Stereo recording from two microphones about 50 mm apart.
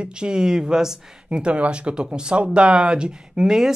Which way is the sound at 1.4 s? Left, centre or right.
Right.